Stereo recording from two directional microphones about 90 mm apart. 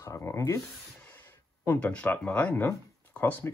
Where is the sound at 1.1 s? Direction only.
20° left (ahead or behind).